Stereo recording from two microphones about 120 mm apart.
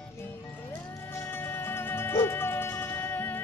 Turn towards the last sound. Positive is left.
turn(degrees=15)  # may be behind; listen again after turning